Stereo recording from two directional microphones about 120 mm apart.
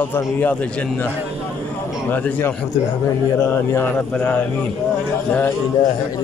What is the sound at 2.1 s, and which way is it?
A man's voice, 15° left (ahead or behind).